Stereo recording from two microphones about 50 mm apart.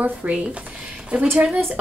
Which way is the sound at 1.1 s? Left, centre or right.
Right.